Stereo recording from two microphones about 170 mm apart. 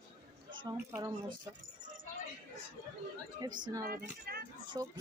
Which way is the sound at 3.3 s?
25° right (ahead or behind).